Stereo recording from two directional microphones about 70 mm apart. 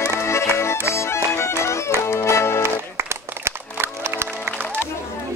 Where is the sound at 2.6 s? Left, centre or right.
Right.